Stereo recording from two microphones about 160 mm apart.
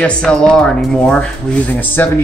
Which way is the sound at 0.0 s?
5° left (ahead or behind).